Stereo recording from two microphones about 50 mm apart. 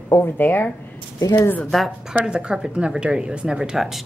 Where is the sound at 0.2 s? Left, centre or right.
Left.